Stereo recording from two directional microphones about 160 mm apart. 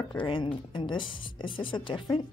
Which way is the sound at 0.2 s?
30° left (ahead or behind).